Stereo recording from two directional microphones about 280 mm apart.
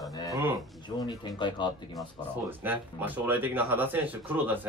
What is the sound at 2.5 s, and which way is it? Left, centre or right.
Speech, centre.